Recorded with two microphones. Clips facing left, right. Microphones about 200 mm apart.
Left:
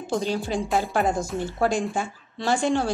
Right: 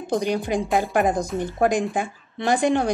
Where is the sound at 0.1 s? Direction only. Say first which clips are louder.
Right 3 dB; 15° right (ahead or behind).